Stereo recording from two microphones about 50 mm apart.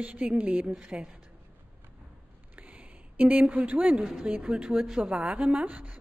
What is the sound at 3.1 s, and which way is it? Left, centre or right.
Speech, right.